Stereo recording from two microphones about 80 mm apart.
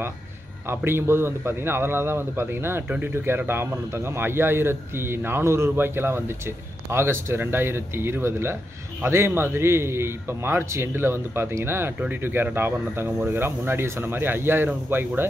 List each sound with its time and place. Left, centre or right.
0.7 s speech: right